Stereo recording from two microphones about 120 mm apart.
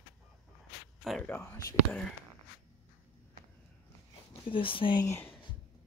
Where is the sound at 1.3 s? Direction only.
15° left (ahead or behind).